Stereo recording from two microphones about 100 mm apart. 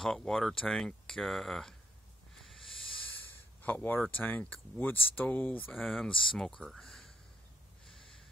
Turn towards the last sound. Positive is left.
turn(degrees=5)  # may be behind; listen again after turning